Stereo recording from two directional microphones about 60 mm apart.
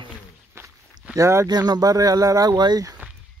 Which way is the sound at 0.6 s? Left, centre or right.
Right.